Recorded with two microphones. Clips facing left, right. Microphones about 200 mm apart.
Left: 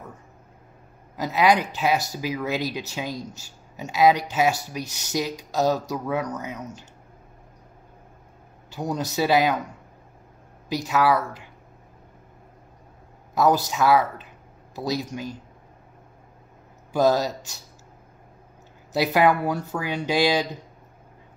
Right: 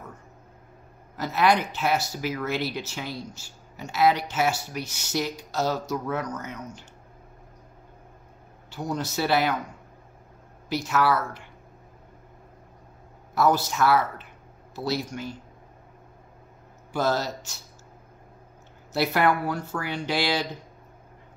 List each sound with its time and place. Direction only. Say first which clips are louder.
1.1 s speech: left 2 dB; 15° left (ahead or behind)
8.7 s speech: left 3 dB; 15° left (ahead or behind)
10.7 s speech: left 2 dB; 15° left (ahead or behind)
13.3 s speech: left 2 dB; 15° left (ahead or behind)
16.9 s speech: left 5 dB; 15° left (ahead or behind)
18.9 s speech: left 3 dB; 15° left (ahead or behind)